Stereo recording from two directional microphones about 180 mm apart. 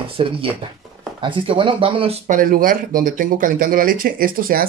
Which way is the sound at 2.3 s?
50° right (ahead or behind).